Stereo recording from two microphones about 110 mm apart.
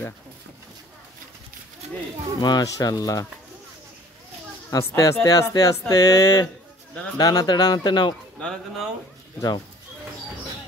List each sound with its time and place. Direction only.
2.4 s speech: 35° left (ahead or behind)
4.6 s speech: 30° left (ahead or behind)
8.4 s speech: 5° left (ahead or behind)